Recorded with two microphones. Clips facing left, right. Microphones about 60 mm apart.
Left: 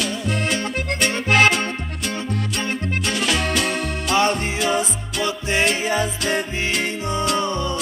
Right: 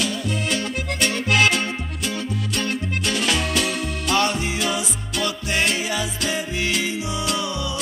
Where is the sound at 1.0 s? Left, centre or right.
Left.